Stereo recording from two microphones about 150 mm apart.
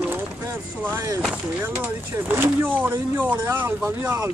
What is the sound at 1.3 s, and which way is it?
Speech, 15° right (ahead or behind).